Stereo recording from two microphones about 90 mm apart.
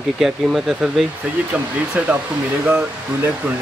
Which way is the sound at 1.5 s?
15° right (ahead or behind).